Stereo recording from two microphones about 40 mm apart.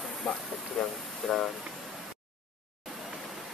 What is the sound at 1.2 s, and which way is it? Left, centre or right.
Speech, centre.